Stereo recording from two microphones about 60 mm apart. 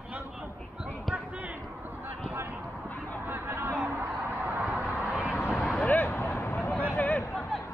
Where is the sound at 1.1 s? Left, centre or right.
Right.